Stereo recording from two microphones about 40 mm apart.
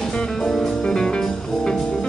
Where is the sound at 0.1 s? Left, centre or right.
Left.